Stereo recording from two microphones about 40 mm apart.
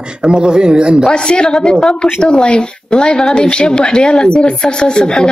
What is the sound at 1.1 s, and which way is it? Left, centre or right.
A woman's voice, left.